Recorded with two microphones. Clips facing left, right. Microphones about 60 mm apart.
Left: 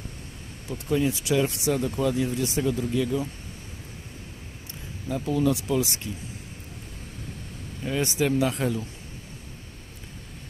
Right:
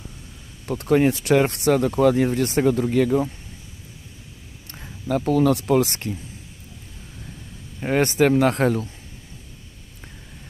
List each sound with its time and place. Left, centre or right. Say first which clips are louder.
0.7 s speech: right 7 dB; right
5.0 s speech: right 6 dB; right
7.8 s speech: right 7 dB; right